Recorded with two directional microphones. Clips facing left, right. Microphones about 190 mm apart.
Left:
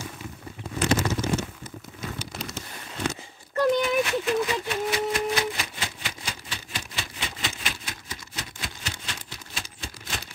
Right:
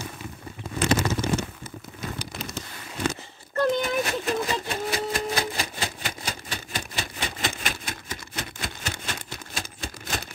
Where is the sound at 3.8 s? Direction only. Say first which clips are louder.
Left 2 dB; 40° right (ahead or behind).